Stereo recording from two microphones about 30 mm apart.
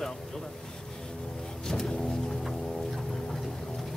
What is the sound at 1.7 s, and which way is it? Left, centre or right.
Vehicle, centre.